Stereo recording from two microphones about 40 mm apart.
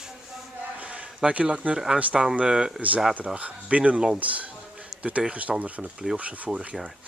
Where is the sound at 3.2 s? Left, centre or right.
Right.